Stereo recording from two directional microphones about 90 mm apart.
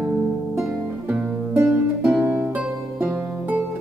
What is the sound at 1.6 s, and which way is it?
Music, 5° right (ahead or behind).